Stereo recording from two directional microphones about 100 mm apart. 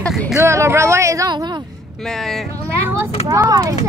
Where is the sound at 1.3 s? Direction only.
45° right (ahead or behind).